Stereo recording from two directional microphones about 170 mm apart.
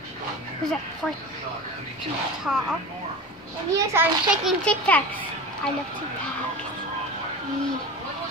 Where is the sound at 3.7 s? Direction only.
20° right (ahead or behind).